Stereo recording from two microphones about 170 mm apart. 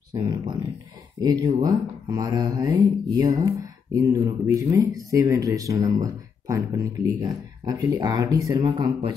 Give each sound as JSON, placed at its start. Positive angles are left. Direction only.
{"t": 0.1, "sound": "speech", "side_deg": -25}